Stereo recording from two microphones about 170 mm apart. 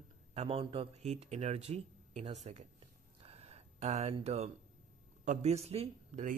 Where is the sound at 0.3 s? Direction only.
35° right (ahead or behind).